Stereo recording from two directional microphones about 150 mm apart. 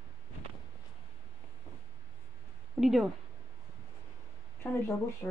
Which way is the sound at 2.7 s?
5° right (ahead or behind).